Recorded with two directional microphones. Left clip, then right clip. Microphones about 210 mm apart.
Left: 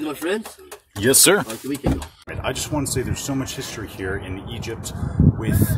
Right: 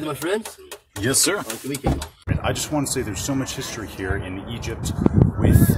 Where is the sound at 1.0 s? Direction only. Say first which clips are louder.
Left 6 dB; 40° left (ahead or behind).